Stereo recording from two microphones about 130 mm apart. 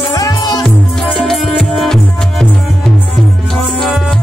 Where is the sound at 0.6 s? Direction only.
Centre (ahead or behind).